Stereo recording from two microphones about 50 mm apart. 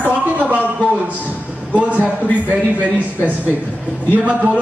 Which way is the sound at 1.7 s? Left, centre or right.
Right.